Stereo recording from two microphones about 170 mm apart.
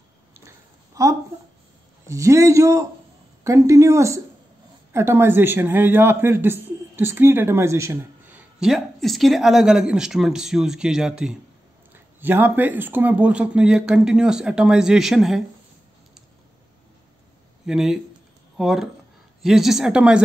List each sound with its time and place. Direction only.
0.5 s a sound: 20° right (ahead or behind)
2.0 s a man's voice: 15° right (ahead or behind)
17.6 s speech: centre (ahead or behind)